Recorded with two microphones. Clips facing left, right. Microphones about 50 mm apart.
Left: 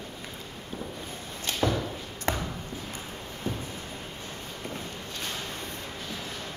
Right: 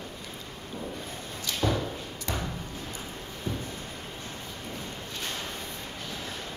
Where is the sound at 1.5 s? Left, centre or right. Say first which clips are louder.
Left 1 dB; left.